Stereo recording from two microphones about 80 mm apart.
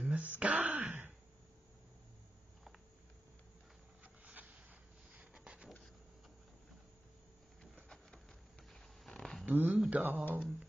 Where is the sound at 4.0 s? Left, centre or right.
Centre.